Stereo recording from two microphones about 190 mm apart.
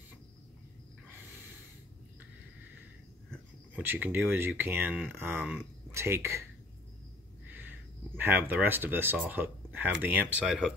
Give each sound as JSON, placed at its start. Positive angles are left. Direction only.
{"t": 3.7, "sound": "speech", "side_deg": -10}
{"t": 5.3, "sound": "speech", "side_deg": 0}
{"t": 5.9, "sound": "speech", "side_deg": -15}
{"t": 8.2, "sound": "speech", "side_deg": -10}